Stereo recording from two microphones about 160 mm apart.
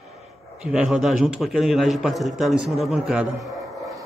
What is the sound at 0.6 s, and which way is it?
A man's voice, 5° right (ahead or behind).